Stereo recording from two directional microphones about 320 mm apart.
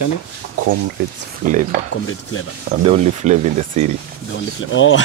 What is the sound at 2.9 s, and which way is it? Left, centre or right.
Speech, right.